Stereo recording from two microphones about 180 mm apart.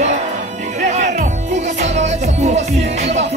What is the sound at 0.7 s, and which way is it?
Music, 40° right (ahead or behind).